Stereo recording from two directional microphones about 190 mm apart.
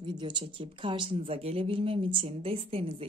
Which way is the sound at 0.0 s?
25° right (ahead or behind).